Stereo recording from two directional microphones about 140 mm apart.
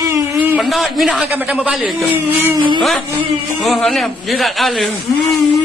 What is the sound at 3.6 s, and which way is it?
Speech, centre (ahead or behind).